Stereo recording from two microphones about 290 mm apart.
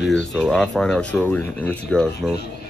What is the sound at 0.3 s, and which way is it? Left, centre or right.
Speech, centre.